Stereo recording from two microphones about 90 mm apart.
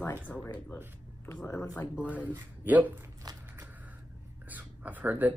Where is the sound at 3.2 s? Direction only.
45° right (ahead or behind).